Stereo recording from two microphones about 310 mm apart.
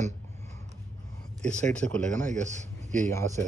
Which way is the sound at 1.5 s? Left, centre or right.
Centre.